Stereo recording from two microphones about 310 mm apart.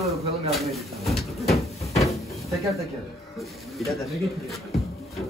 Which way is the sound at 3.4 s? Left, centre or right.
Centre.